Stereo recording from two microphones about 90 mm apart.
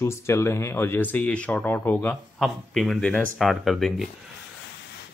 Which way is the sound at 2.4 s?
5° left (ahead or behind).